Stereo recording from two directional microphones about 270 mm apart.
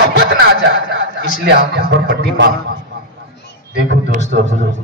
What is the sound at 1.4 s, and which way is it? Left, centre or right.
A man's voice, right.